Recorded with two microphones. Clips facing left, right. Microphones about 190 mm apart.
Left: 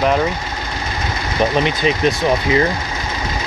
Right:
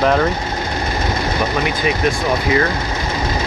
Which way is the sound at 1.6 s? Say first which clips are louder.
Left 1 dB; 20° left (ahead or behind).